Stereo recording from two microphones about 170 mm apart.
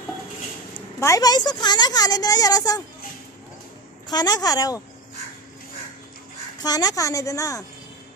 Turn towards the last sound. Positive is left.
turn(degrees=20)  # may be behind; listen again after turning